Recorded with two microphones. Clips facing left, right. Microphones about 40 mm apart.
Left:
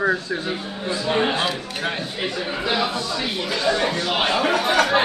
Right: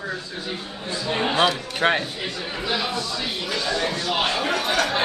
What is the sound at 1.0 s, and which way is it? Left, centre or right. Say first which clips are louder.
Speech: left 3 dB; centre.